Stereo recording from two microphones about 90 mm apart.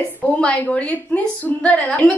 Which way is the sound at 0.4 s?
15° left (ahead or behind).